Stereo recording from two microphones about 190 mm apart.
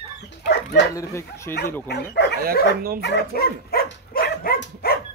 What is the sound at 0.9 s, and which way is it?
Speech, 15° left (ahead or behind).